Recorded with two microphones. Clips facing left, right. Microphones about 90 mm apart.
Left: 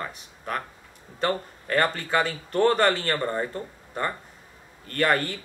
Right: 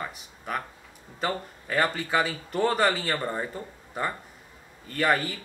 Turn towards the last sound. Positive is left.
turn(degrees=-5)  # may be behind; listen again after turning